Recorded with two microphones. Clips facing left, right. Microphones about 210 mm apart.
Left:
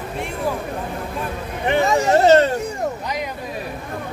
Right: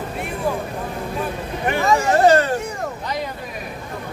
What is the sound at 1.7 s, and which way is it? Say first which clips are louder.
Hubbub: left 2 dB; 25° left (ahead or behind).